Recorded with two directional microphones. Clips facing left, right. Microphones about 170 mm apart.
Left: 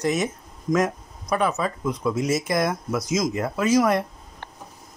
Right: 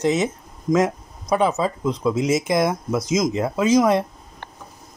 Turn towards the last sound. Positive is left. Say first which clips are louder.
# right 3 dB
turn(degrees=-20)  # may be behind; listen again after turning